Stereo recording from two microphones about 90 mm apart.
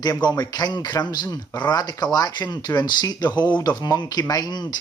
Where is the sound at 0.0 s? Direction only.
45° left (ahead or behind).